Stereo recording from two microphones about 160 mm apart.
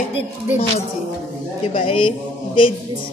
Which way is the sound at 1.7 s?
30° left (ahead or behind).